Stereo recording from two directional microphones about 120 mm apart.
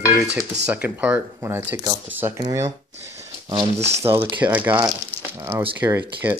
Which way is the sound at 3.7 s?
65° right (ahead or behind).